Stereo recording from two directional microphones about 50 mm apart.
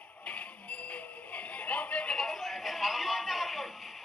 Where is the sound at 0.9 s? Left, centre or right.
Left.